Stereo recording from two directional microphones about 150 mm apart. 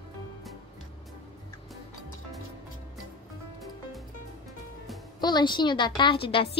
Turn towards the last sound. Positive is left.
turn(degrees=35)  # may be behind; listen again after turning